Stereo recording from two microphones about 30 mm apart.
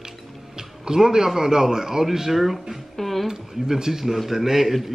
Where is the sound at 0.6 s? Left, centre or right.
Right; by 2.6 s centre.